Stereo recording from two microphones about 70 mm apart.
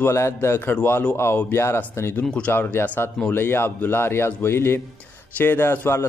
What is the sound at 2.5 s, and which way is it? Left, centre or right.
A man's voice, left.